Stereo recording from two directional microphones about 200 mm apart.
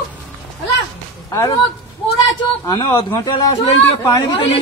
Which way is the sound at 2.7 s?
25° left (ahead or behind).